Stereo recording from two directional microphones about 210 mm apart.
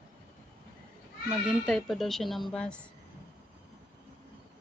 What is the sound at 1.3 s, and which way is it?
Speech, centre (ahead or behind).